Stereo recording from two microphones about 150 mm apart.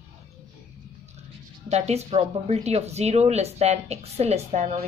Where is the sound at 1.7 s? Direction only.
45° right (ahead or behind).